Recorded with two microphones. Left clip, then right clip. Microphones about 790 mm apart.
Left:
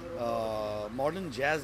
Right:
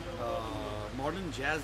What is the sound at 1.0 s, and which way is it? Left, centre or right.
Speech, left.